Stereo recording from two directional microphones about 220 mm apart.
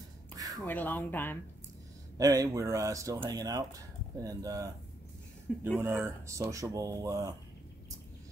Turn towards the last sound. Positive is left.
turn(degrees=-15)  # may be behind; listen again after turning